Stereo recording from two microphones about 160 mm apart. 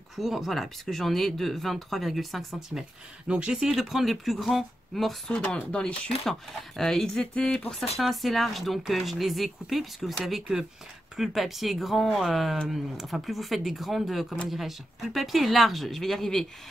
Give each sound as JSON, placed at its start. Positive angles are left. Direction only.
{"t": 0.1, "sound": "speech", "side_deg": 0}